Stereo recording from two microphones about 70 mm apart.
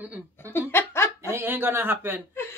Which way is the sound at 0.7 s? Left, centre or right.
Left.